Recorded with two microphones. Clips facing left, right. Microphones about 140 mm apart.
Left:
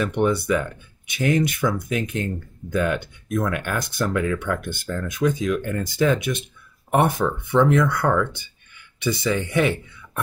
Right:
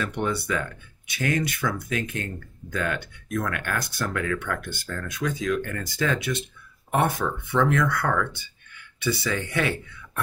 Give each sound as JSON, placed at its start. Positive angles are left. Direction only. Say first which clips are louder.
{"t": 0.0, "sound": "speech", "louder": "left 6 dB", "side_deg": 15}
{"t": 7.5, "sound": "speech", "louder": "left 4 dB", "side_deg": 20}